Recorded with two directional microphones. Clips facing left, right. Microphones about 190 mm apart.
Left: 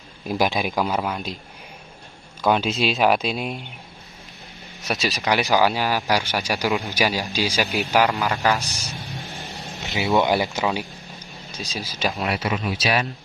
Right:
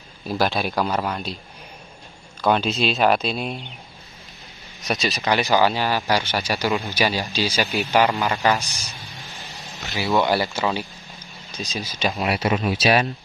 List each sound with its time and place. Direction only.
0.3 s speech: 15° left (ahead or behind)
2.4 s speech: 10° left (ahead or behind)
4.8 s speech: centre (ahead or behind)
9.3 s a sound: 55° left (ahead or behind)
9.8 s speech: 20° left (ahead or behind); by 12.4 s centre (ahead or behind)
12.4 s speech: 35° right (ahead or behind)